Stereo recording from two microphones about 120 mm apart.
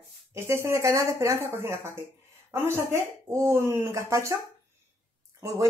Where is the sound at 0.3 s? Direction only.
20° right (ahead or behind).